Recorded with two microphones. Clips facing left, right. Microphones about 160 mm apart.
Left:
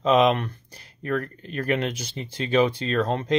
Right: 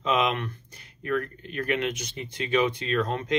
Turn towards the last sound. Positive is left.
turn(degrees=35)  # may be behind; listen again after turning